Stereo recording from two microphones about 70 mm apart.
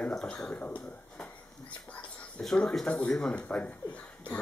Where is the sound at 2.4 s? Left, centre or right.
Centre.